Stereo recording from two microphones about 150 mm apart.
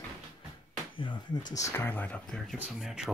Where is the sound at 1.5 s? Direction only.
20° left (ahead or behind); by 3.0 s centre (ahead or behind).